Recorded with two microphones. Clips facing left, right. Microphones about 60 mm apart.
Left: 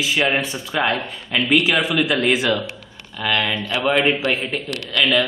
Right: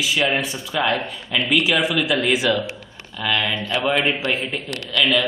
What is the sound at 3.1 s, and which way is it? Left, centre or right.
A man's voice, centre.